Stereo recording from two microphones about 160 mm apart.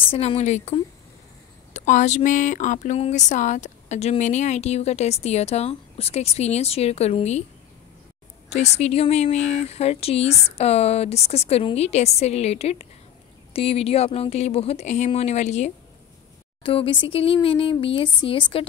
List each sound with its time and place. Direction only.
0.1 s speech: 40° left (ahead or behind)
8.5 s speech: 45° left (ahead or behind)
16.6 s speech: 35° left (ahead or behind)